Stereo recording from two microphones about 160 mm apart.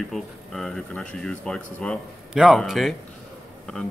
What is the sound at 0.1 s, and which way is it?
Speech, 5° left (ahead or behind).